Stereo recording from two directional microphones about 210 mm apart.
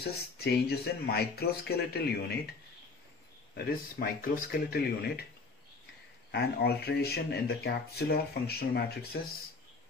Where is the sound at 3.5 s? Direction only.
45° left (ahead or behind).